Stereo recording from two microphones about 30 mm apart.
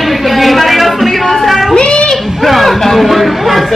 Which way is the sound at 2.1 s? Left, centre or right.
Centre.